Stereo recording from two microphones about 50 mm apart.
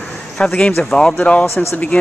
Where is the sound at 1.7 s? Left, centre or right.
Left.